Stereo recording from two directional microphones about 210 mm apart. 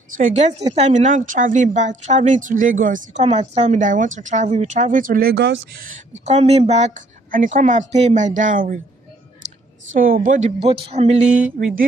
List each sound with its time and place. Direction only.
0.1 s speech: 35° right (ahead or behind)
0.5 s a woman's voice: 20° right (ahead or behind)
0.7 s speech: 35° right (ahead or behind)
5.3 s speech: 60° right (ahead or behind)
6.2 s speech: 30° right (ahead or behind)
9.9 s speech: 40° right (ahead or behind)
11.6 s mantra: 40° right (ahead or behind)